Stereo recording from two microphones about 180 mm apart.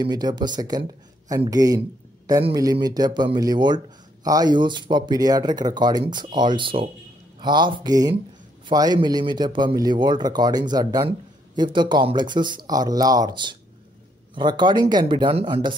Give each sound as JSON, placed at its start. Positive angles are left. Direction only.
{"t": 0.0, "sound": "speech", "side_deg": -20}
{"t": 1.8, "sound": "a sound", "side_deg": -20}
{"t": 2.5, "sound": "speech", "side_deg": -20}